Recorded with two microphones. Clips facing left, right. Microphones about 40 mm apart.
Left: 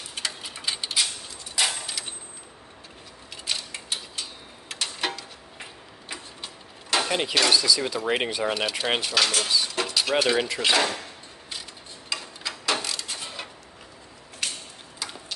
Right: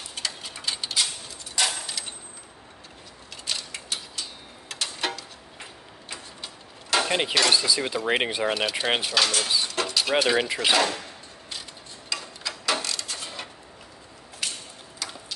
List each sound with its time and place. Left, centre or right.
0.1 s tick-tock: centre
1.5 s a sound: centre
3.4 s mechanisms: centre
4.7 s tick-tock: centre
7.1 s speech: centre
8.5 s speech: centre
10.8 s speech: centre
12.1 s tick-tock: centre
13.0 s a sound: centre